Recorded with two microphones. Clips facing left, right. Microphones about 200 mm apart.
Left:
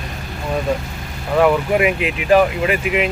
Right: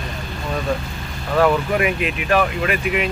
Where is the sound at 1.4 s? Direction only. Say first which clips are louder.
Left 2 dB; 20° left (ahead or behind).